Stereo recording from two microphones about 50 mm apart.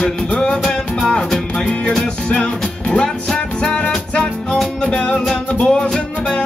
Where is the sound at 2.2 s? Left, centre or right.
Left.